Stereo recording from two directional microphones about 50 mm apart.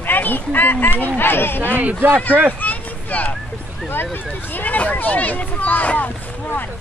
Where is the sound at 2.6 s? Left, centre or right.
Left.